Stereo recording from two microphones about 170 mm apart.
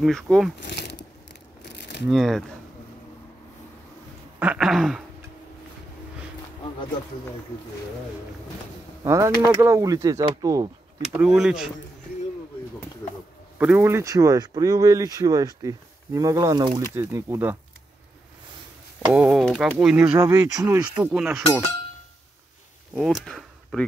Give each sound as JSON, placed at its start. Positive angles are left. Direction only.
{"t": 0.0, "sound": "speech", "side_deg": 0}
{"t": 0.6, "sound": "a sound", "side_deg": 85}
{"t": 2.0, "sound": "speech", "side_deg": 0}
{"t": 4.4, "sound": "speech", "side_deg": -5}
{"t": 9.0, "sound": "speech", "side_deg": -15}
{"t": 11.1, "sound": "speech", "side_deg": -5}
{"t": 13.6, "sound": "speech", "side_deg": -10}
{"t": 19.0, "sound": "speech", "side_deg": -5}
{"t": 20.1, "sound": "speech", "side_deg": -15}
{"t": 21.0, "sound": "speech", "side_deg": -5}
{"t": 22.9, "sound": "speech", "side_deg": 0}